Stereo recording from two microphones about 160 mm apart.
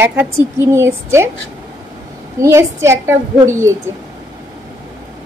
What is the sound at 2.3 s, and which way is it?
Speech, 20° right (ahead or behind).